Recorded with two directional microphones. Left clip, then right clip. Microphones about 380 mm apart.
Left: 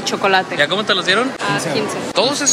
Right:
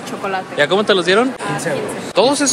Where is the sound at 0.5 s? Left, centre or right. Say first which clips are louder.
Right 2 dB; centre.